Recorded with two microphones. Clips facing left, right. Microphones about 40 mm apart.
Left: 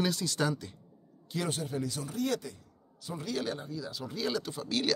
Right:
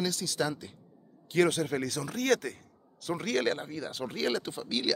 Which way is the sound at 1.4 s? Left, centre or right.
Right.